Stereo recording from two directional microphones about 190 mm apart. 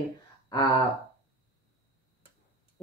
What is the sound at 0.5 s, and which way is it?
Speech, 20° left (ahead or behind).